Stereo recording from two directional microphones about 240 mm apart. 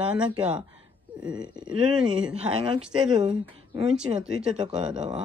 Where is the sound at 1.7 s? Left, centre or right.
Right.